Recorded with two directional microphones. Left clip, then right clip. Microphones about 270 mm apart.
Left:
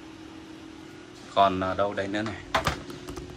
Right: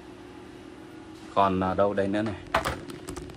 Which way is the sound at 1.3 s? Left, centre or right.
Centre.